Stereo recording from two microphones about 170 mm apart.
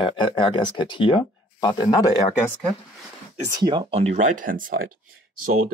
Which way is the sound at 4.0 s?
45° right (ahead or behind).